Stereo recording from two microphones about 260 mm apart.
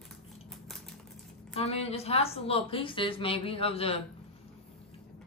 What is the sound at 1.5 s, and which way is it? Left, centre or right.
A woman's voice, left.